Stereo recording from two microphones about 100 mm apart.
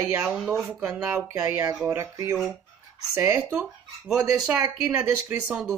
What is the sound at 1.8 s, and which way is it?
Speech, 20° right (ahead or behind).